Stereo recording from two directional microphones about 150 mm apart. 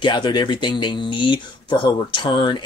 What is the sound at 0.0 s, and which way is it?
Speech, 30° left (ahead or behind).